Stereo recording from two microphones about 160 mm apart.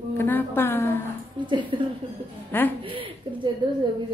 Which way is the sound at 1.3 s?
30° right (ahead or behind).